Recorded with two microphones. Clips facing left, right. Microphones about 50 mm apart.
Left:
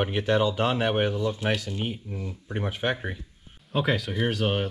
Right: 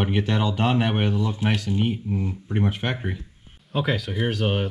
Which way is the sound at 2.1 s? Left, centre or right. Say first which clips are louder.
Right 7 dB; right.